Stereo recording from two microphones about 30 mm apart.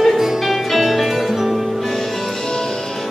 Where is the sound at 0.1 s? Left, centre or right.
Centre.